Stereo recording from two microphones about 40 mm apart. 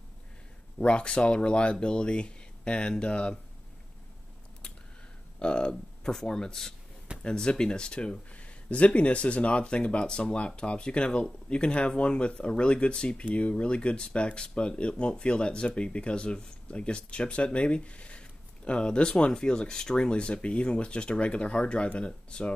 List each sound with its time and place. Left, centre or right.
0.7 s speech: left
5.4 s speech: left